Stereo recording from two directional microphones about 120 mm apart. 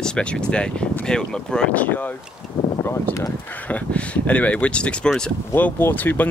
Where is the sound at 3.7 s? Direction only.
10° left (ahead or behind).